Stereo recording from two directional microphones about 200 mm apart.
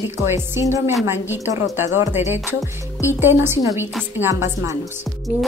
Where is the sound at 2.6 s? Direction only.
15° left (ahead or behind).